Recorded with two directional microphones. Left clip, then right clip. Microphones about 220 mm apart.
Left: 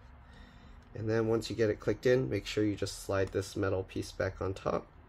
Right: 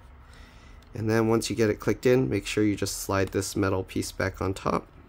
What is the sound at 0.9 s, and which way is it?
Speech, 25° right (ahead or behind).